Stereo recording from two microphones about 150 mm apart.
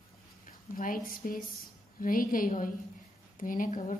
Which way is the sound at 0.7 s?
60° left (ahead or behind).